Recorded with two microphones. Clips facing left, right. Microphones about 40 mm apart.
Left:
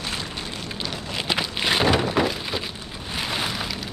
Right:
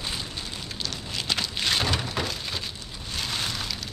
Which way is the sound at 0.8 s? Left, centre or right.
Centre.